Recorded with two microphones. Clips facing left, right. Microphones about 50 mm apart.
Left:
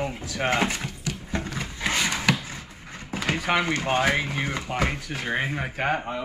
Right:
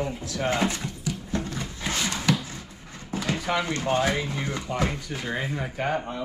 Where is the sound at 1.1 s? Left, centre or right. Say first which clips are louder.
Even; left.